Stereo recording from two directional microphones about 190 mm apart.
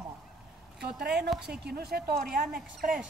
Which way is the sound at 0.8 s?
60° right (ahead or behind).